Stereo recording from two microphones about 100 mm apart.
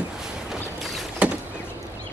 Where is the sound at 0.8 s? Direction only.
Centre (ahead or behind).